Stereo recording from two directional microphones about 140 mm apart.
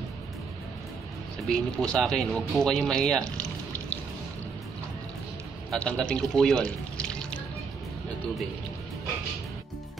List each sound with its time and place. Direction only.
1.5 s speech: 5° left (ahead or behind)
5.7 s speech: 5° left (ahead or behind)